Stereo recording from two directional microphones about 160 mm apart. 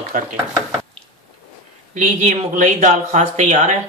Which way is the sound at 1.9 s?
50° right (ahead or behind).